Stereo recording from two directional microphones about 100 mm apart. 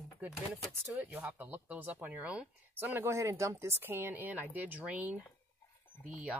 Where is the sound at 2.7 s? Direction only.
20° right (ahead or behind).